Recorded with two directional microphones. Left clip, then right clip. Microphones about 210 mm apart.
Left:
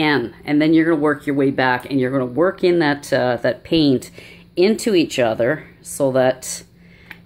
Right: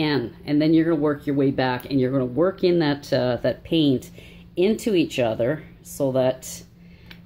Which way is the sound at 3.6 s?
10° left (ahead or behind).